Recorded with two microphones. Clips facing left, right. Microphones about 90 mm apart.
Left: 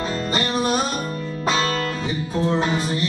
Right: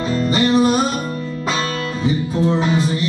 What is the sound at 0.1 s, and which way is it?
Music, 40° left (ahead or behind).